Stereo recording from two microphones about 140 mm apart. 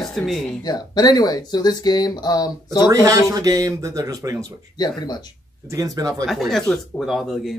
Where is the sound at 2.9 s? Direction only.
25° right (ahead or behind).